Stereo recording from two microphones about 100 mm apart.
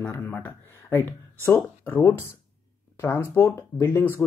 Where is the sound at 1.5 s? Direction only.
15° left (ahead or behind).